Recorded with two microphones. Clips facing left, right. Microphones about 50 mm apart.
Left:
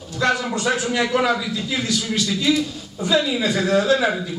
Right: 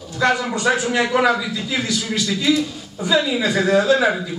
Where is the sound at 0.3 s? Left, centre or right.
Centre.